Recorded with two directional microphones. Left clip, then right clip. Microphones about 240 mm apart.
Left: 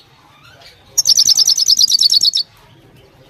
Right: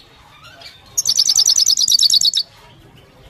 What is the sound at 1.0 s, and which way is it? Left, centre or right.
Bird, centre.